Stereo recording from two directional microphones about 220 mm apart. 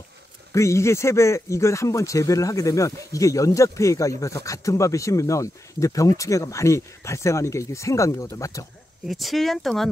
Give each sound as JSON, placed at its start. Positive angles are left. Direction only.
{"t": 0.5, "sound": "speech", "side_deg": 15}
{"t": 9.0, "sound": "speech", "side_deg": 0}